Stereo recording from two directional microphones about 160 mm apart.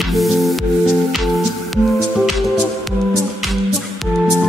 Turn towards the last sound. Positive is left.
turn(degrees=0)  # may be behind; listen again after turning